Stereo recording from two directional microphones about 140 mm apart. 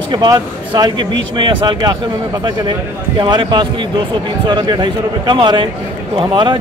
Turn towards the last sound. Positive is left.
turn(degrees=-35)  # may be behind; listen again after turning